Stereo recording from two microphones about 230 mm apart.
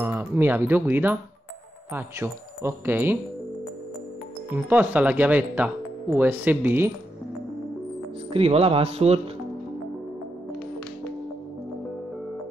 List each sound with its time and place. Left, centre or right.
0.0 s speech: centre
4.6 s speech: centre
8.3 s speech: right